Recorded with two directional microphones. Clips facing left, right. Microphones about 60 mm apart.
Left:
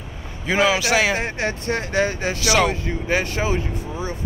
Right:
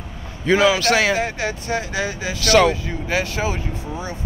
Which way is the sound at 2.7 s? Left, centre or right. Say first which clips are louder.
Left 1 dB; left.